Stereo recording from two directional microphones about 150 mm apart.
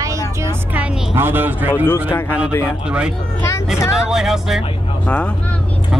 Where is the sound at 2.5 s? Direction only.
15° left (ahead or behind).